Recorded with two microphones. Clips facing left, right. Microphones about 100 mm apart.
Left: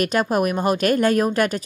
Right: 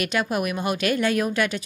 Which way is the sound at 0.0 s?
40° left (ahead or behind).